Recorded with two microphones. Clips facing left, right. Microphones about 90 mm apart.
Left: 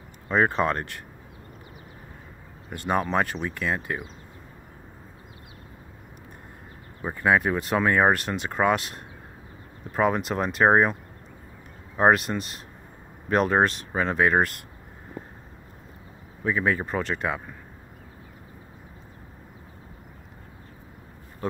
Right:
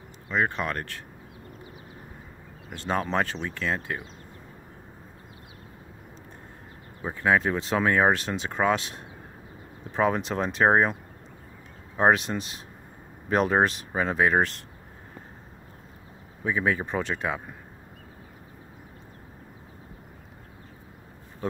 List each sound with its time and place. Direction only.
0.3 s speech: 40° left (ahead or behind)
2.7 s speech: 10° left (ahead or behind)
7.0 s speech: 5° left (ahead or behind)
12.0 s speech: 5° left (ahead or behind)
16.4 s speech: centre (ahead or behind)